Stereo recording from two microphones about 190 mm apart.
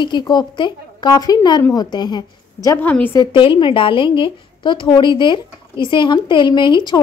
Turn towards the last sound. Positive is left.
turn(degrees=25)  # may be behind; listen again after turning